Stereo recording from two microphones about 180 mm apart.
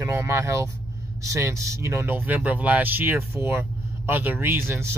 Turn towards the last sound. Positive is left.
turn(degrees=-15)  # may be behind; listen again after turning